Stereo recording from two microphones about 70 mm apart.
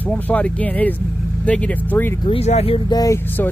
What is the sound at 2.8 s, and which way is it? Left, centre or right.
Speech, left.